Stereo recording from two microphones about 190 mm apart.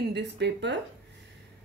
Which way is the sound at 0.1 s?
65° right (ahead or behind).